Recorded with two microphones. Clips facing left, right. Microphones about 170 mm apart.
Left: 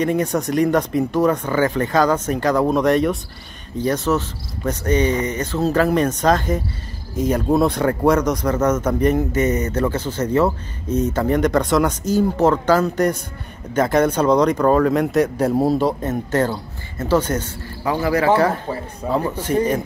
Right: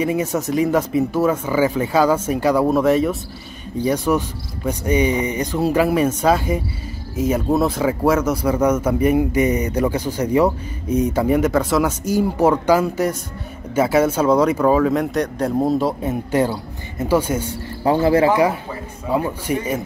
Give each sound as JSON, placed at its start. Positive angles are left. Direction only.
{"t": 0.0, "sound": "speech", "side_deg": -5}
{"t": 17.9, "sound": "speech", "side_deg": -25}
{"t": 18.3, "sound": "speech", "side_deg": -10}